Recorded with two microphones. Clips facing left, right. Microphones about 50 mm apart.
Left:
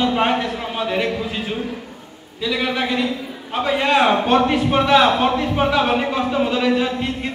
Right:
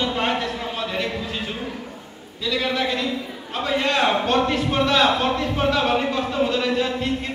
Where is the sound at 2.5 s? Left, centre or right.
Centre.